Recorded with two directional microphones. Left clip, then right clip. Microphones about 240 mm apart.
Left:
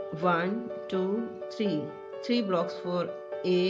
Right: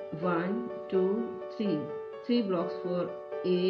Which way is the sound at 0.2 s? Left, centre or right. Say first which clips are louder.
Left 4 dB; left.